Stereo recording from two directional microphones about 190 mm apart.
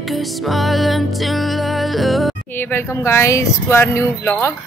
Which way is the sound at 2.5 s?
10° left (ahead or behind).